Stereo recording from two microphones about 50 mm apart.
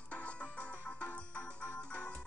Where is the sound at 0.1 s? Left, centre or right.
Left.